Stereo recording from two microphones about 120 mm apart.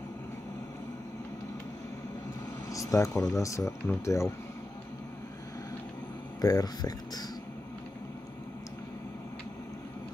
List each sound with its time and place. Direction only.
2.7 s speech: 25° left (ahead or behind)
6.4 s speech: 35° left (ahead or behind)